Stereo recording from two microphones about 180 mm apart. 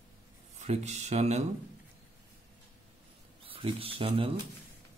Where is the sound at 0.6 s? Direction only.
40° right (ahead or behind).